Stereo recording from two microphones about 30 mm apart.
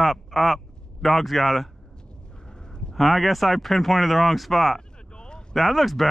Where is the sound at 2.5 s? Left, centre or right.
Left.